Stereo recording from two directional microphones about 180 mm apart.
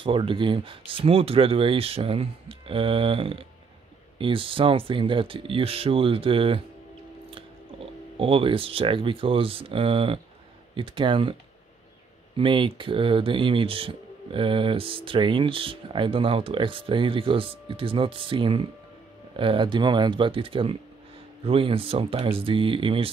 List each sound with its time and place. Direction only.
0.0 s speech: 30° right (ahead or behind)
12.4 s speech: 30° right (ahead or behind)